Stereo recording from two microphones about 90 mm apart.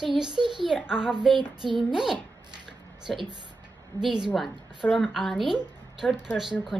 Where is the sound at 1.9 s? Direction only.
5° right (ahead or behind).